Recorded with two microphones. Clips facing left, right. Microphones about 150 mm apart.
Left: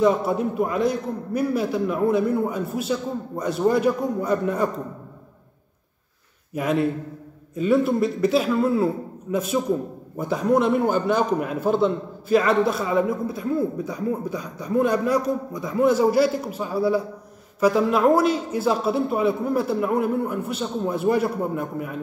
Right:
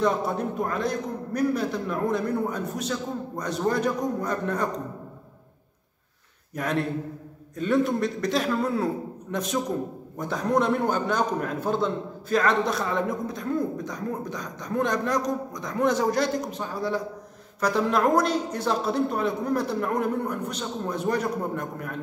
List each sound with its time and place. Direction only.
0.0 s a man's voice: 5° left (ahead or behind)
6.5 s a man's voice: 5° left (ahead or behind)